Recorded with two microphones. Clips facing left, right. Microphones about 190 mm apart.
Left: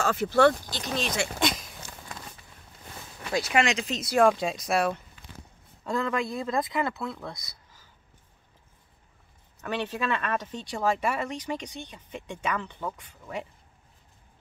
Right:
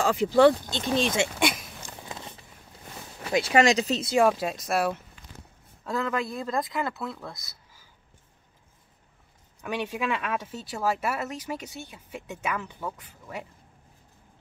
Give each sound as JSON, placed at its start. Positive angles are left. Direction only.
{"t": 0.0, "sound": "speech", "side_deg": -15}
{"t": 1.4, "sound": "speech", "side_deg": -10}
{"t": 2.0, "sound": "a sound", "side_deg": -25}
{"t": 3.3, "sound": "speech", "side_deg": -20}
{"t": 3.5, "sound": "speech", "side_deg": -35}
{"t": 4.2, "sound": "speech", "side_deg": -5}
{"t": 9.6, "sound": "speech", "side_deg": -10}